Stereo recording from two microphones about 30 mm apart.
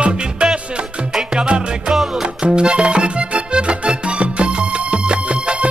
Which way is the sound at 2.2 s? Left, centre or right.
Right.